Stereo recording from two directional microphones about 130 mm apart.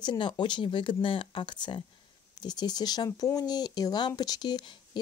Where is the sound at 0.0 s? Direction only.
35° left (ahead or behind).